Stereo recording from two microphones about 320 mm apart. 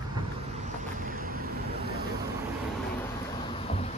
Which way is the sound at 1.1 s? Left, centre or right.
Right.